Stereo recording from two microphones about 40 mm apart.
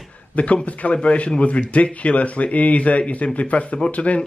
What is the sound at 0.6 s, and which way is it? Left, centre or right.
A man's voice, left.